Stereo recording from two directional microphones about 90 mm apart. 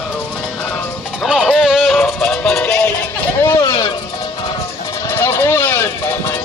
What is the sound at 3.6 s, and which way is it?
Vehicle, 55° left (ahead or behind).